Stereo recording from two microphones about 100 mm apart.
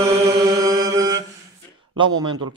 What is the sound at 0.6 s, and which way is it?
Mantra, 35° right (ahead or behind).